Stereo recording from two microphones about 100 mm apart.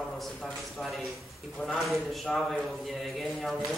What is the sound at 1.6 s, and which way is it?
A man's voice, centre (ahead or behind).